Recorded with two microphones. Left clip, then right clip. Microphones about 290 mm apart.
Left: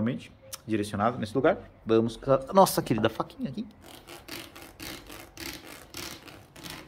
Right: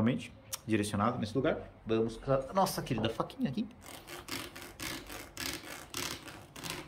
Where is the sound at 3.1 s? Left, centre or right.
Centre.